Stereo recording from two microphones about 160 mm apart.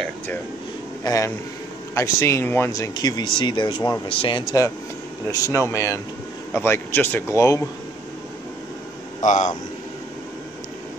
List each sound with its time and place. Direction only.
1.0 s a man's voice: 20° left (ahead or behind)
5.3 s speech: 15° left (ahead or behind)
9.2 s speech: 50° left (ahead or behind)